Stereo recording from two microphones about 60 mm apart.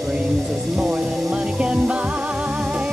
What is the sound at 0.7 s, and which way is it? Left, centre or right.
Music, centre.